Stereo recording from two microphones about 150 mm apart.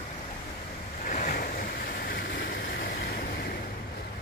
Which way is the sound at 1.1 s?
65° left (ahead or behind).